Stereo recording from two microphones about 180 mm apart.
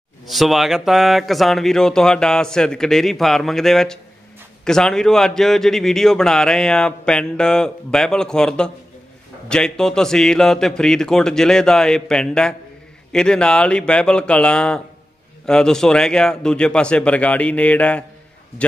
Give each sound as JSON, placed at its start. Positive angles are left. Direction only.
{"t": 0.3, "sound": "a man's voice", "side_deg": 0}